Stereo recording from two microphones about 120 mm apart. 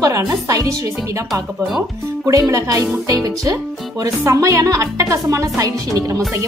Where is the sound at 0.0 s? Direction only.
25° right (ahead or behind).